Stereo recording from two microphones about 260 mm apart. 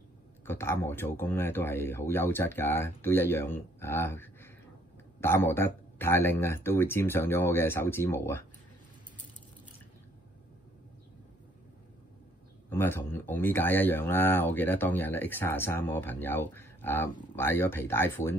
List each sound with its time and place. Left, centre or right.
0.5 s speech: centre
12.6 s speech: centre